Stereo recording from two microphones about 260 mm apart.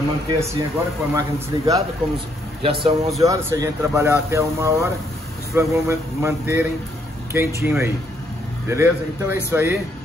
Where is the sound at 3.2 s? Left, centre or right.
Centre.